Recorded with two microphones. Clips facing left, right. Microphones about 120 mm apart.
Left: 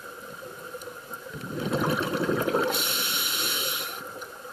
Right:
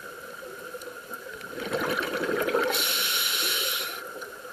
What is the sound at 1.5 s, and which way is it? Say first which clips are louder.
Water: left 2 dB; 30° left (ahead or behind).